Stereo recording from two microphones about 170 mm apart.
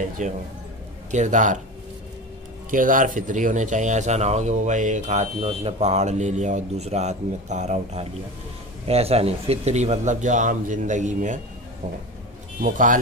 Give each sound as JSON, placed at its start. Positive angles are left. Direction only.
{"t": 0.2, "sound": "speech", "side_deg": -45}
{"t": 2.7, "sound": "speech", "side_deg": -50}
{"t": 12.5, "sound": "speech", "side_deg": -50}